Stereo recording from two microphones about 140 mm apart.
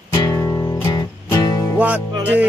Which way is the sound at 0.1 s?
20° left (ahead or behind).